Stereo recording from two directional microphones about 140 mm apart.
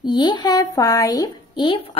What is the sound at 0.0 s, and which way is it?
Speech, 35° left (ahead or behind).